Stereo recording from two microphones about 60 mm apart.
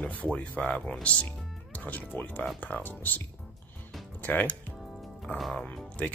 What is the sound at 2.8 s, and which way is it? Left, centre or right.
Speech, left.